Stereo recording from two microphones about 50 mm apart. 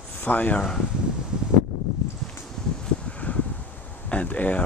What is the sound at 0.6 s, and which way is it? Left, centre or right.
Speech, centre.